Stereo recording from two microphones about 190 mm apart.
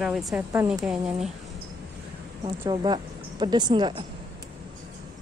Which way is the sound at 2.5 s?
25° right (ahead or behind).